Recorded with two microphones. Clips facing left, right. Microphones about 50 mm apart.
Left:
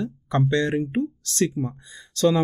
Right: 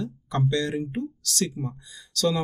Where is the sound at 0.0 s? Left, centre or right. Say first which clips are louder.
Left 3 dB; left.